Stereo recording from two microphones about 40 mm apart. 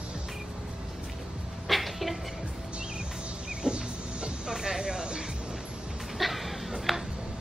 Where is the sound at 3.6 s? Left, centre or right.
Right.